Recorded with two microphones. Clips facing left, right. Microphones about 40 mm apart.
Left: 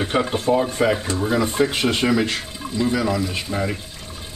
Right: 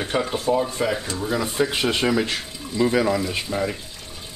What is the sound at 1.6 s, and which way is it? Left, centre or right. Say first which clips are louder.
Speech: left 2 dB; centre.